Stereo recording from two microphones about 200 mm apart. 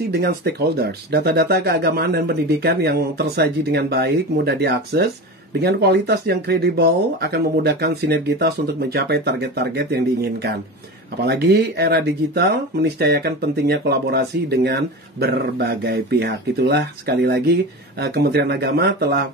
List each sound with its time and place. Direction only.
0.1 s speech: 55° right (ahead or behind)
11.2 s speech: 55° right (ahead or behind)